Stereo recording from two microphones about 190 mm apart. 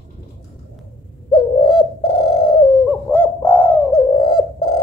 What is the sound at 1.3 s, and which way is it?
Bird, 25° left (ahead or behind).